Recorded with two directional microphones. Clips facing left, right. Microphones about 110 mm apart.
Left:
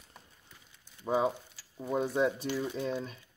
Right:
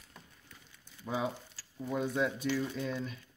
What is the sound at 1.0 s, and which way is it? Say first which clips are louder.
Speech: left 7 dB; 40° left (ahead or behind).